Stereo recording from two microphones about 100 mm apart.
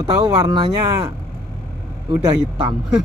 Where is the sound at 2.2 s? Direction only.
50° right (ahead or behind).